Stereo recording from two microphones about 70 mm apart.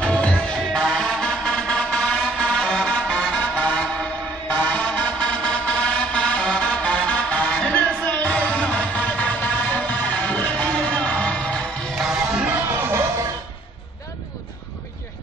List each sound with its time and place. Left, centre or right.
0.0 s music: centre
12.0 s music: centre
12.6 s music: right